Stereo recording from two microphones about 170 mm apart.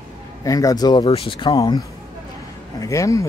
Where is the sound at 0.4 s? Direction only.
20° left (ahead or behind).